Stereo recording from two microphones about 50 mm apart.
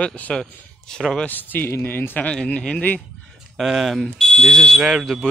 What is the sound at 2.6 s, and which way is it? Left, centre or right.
Speech, left.